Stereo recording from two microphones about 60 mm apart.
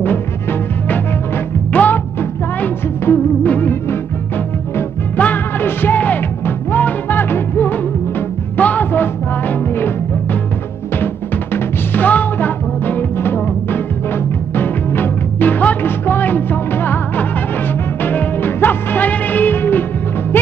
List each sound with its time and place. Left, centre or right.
0.0 s music: left
5.1 s music: left
11.5 s music: left